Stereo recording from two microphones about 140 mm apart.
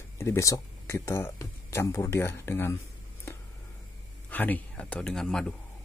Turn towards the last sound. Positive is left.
turn(degrees=5)  # may be behind; listen again after turning